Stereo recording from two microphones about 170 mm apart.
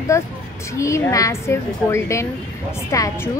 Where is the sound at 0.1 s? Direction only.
15° left (ahead or behind).